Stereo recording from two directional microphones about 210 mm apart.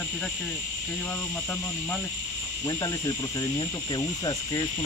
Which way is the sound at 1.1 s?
10° left (ahead or behind).